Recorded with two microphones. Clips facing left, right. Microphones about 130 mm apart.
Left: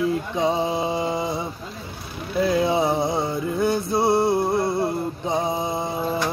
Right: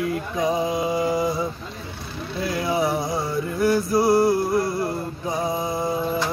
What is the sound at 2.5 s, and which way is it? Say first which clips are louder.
Mantra: left 1 dB; 25° left (ahead or behind).